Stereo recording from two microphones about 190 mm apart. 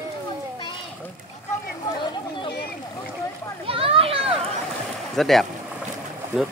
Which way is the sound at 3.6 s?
30° right (ahead or behind).